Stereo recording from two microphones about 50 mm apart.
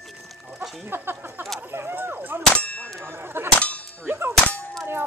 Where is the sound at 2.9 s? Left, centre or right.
Right.